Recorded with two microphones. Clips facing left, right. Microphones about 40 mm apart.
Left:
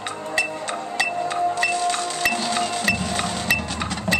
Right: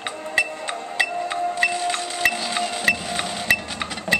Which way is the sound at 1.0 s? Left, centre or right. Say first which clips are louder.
Left 1 dB; centre.